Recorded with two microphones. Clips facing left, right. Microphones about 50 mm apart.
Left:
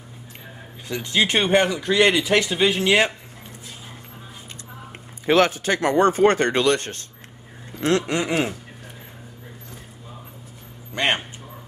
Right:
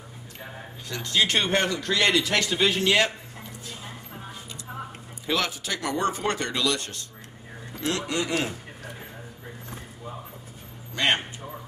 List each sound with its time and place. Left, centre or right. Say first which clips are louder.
0.8 s speech: left 3 dB; centre
5.2 s speech: left 10 dB; left
7.8 s a sound: left 6 dB; left
11.0 s a man's voice: left 2 dB; left